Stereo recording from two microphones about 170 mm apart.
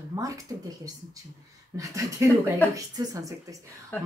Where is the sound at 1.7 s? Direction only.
20° right (ahead or behind).